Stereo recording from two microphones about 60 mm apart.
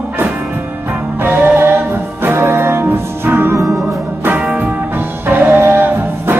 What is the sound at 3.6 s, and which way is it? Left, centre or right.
Music, centre.